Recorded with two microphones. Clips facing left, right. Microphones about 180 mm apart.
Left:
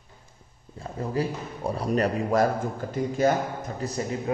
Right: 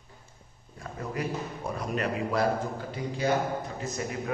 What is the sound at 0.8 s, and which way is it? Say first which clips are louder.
A man's voice: left 5 dB; 30° left (ahead or behind).